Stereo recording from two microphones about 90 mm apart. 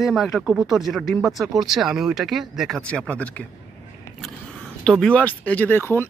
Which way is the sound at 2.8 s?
15° left (ahead or behind).